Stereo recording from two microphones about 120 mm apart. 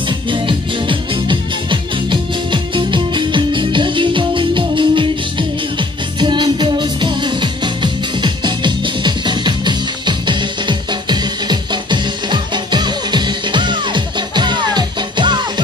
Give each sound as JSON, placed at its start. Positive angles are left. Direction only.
{"t": 0.3, "sound": "music", "side_deg": -45}